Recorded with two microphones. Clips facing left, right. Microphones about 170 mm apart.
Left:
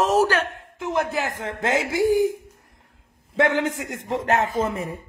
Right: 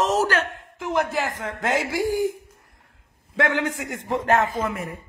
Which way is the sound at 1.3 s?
25° left (ahead or behind).